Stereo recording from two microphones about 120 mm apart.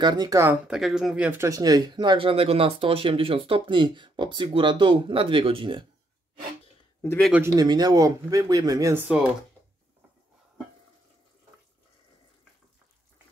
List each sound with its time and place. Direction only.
0.0 s speech: 35° right (ahead or behind)
0.7 s speech: 5° right (ahead or behind)
1.4 s speech: 30° right (ahead or behind)
7.6 s speech: 35° right (ahead or behind)
8.9 s speech: 15° right (ahead or behind)